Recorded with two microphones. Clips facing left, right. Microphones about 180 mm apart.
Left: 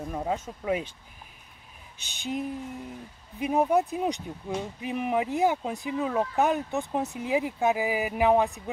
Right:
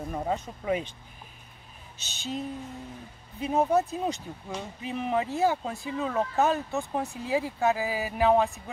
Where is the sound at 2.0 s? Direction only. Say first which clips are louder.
Left 2 dB; 15° left (ahead or behind).